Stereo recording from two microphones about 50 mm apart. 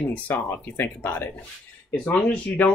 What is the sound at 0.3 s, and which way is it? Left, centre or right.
Speech, left.